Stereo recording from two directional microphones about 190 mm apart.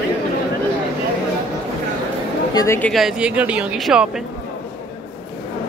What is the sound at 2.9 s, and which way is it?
Speech, centre (ahead or behind).